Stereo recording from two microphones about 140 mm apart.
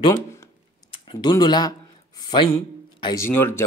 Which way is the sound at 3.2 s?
15° left (ahead or behind).